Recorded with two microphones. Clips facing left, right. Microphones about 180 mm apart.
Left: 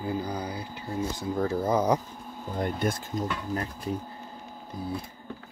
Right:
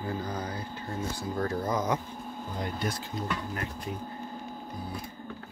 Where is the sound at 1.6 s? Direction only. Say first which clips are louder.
Left 7 dB; 30° left (ahead or behind).